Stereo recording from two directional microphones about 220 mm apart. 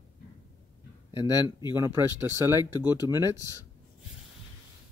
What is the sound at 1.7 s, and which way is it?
Speech, 15° right (ahead or behind).